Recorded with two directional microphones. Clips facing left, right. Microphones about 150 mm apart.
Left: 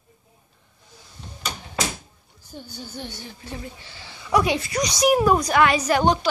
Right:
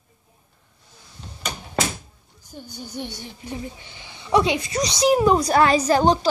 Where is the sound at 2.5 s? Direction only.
10° right (ahead or behind).